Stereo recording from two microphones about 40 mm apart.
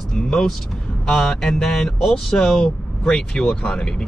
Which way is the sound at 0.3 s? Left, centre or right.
Centre.